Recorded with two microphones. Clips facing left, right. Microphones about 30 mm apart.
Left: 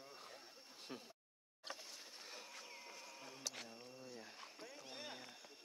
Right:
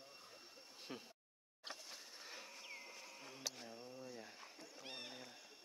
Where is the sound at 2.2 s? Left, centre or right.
Centre.